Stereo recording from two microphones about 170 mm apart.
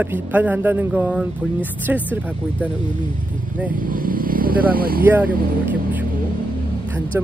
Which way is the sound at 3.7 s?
55° right (ahead or behind).